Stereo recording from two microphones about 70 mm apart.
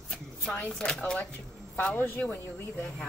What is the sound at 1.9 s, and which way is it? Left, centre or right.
Speech, left.